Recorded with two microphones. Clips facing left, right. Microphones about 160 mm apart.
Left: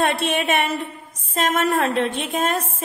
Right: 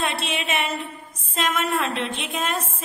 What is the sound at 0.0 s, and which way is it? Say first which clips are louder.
A woman's voice: left 6 dB; 50° left (ahead or behind).